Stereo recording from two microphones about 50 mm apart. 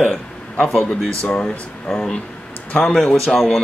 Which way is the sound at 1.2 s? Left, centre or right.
Left.